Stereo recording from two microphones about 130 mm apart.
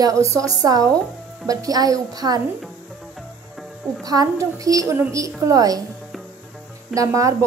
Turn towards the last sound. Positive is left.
turn(degrees=-25)  # may be behind; listen again after turning